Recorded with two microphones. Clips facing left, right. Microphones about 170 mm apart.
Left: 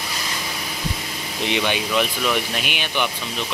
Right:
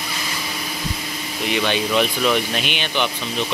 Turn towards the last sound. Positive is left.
turn(degrees=5)  # may be behind; listen again after turning